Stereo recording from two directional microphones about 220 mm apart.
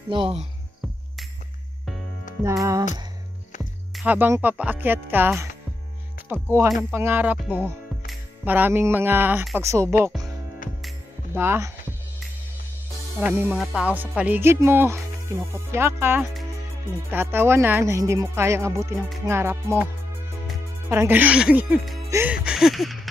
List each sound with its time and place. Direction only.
0.1 s speech: 25° right (ahead or behind)
3.9 s music: 5° right (ahead or behind)
6.7 s speech: 5° right (ahead or behind)
11.3 s speech: 10° right (ahead or behind)
13.2 s music: 5° right (ahead or behind)
20.9 s music: 10° right (ahead or behind)
22.1 s a sound: 5° right (ahead or behind)